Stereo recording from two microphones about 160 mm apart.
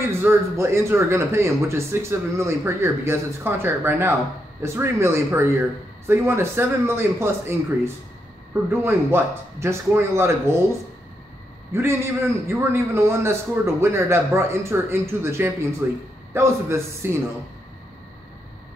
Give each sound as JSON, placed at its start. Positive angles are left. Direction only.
{"t": 0.2, "sound": "speech", "side_deg": -15}
{"t": 11.7, "sound": "speech", "side_deg": -15}